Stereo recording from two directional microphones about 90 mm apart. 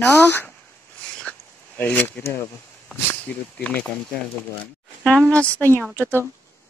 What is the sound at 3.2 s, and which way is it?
Speech, 15° left (ahead or behind).